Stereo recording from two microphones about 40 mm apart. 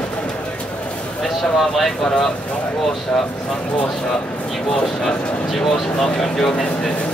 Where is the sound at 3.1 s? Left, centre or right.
Centre.